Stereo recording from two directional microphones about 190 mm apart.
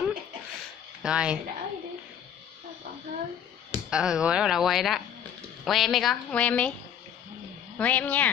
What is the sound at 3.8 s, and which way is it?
A woman's voice, 5° right (ahead or behind).